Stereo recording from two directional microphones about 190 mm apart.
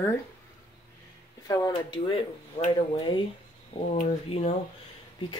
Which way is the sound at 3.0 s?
25° left (ahead or behind).